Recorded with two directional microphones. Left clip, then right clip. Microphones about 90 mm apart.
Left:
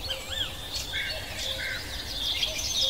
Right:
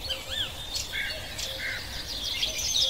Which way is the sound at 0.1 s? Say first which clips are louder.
Right 1 dB; 40° right (ahead or behind).